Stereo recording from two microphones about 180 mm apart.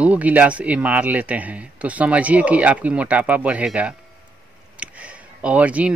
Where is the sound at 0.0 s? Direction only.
10° right (ahead or behind).